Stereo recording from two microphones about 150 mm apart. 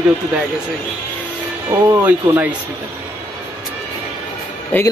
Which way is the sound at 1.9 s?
15° right (ahead or behind).